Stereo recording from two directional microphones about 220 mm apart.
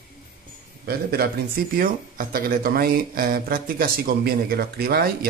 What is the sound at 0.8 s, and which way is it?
A man's voice, 45° right (ahead or behind).